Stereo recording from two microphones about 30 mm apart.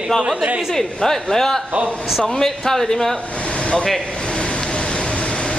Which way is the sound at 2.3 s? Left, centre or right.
Centre.